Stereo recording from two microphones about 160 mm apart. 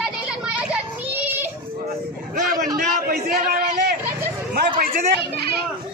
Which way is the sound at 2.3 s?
55° right (ahead or behind).